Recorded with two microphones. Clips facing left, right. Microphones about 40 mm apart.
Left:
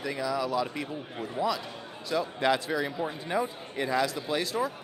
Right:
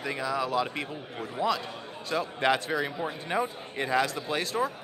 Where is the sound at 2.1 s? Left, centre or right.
Right.